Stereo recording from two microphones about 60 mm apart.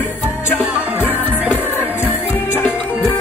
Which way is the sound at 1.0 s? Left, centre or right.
Left.